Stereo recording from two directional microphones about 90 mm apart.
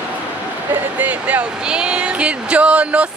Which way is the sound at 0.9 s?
20° right (ahead or behind).